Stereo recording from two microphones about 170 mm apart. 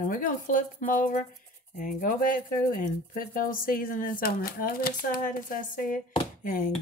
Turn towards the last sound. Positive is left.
turn(degrees=55)  # may be behind; listen again after turning